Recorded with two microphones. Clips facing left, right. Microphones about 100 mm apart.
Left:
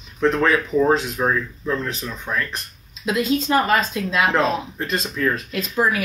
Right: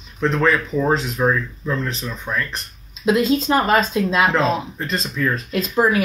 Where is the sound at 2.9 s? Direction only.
25° right (ahead or behind).